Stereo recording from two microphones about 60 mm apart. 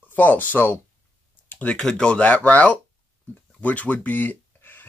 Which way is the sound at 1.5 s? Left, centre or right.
Left.